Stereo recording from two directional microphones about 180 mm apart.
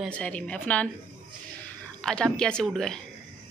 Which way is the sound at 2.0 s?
5° left (ahead or behind).